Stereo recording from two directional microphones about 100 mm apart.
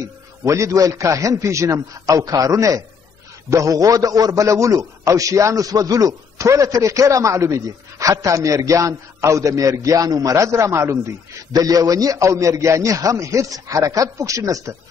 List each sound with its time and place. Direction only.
0.0 s a man's voice: 30° right (ahead or behind)